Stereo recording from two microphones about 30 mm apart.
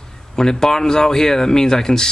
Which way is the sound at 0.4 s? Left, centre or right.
Centre.